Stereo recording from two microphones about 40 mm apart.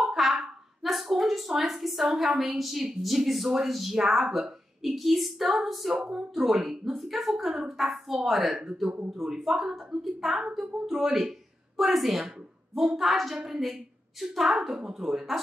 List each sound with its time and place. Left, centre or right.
0.0 s a sound: centre
1.6 s a woman's voice: centre
9.6 s a woman's voice: centre
10.0 s a woman's voice: centre